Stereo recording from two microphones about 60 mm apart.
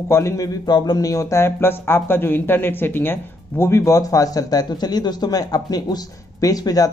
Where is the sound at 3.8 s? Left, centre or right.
Left.